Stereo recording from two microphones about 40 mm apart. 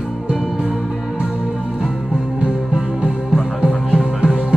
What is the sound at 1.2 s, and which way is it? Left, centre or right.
Music, centre.